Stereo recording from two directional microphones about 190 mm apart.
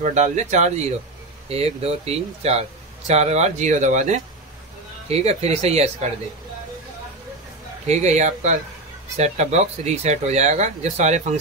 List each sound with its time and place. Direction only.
0.0 s speech: 40° right (ahead or behind)
7.8 s speech: 35° right (ahead or behind)